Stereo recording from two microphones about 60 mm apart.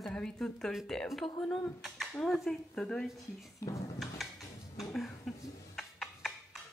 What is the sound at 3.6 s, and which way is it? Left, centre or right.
Music, left.